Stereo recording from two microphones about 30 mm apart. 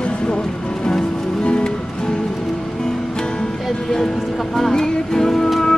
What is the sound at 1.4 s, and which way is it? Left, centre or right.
Music, left.